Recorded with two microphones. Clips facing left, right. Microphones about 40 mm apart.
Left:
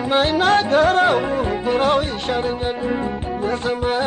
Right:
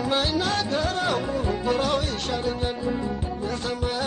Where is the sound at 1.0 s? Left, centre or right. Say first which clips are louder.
Left 7 dB; left.